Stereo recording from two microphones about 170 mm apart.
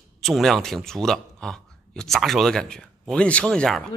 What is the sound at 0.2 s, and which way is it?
A man's voice, centre (ahead or behind).